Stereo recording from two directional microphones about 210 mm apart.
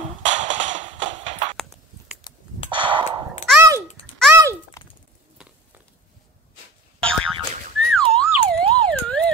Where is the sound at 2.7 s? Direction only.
25° right (ahead or behind).